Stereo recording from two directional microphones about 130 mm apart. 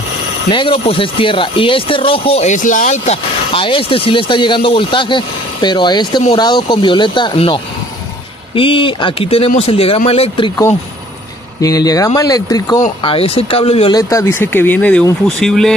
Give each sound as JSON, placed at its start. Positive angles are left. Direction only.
{"t": 0.5, "sound": "speech", "side_deg": 40}
{"t": 2.5, "sound": "speech", "side_deg": 80}
{"t": 3.5, "sound": "speech", "side_deg": 40}
{"t": 11.6, "sound": "speech", "side_deg": 30}
{"t": 13.0, "sound": "speech", "side_deg": 45}
{"t": 14.0, "sound": "speech", "side_deg": 20}